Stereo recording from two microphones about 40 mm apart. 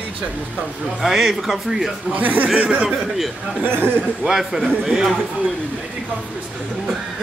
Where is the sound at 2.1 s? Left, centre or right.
Right.